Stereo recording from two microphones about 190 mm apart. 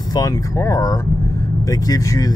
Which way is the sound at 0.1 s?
20° left (ahead or behind).